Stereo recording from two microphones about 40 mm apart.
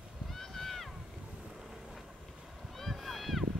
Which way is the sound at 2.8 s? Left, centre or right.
Centre.